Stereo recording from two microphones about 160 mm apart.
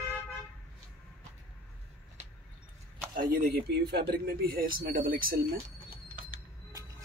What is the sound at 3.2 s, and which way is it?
Speech, 65° right (ahead or behind).